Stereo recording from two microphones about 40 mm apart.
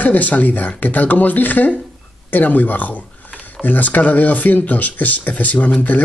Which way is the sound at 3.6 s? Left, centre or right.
Left.